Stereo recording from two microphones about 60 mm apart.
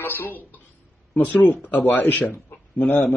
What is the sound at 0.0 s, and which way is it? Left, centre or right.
Speech, left.